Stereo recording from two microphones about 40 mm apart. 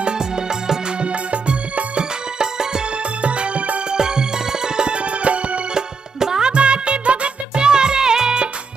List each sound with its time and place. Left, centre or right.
0.0 s music: centre
1.0 s music: right
3.2 s music: right
3.9 s music: centre
5.8 s music: centre
6.5 s music: right